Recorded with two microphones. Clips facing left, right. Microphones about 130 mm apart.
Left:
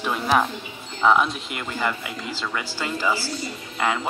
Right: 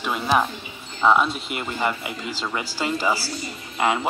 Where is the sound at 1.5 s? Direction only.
20° right (ahead or behind).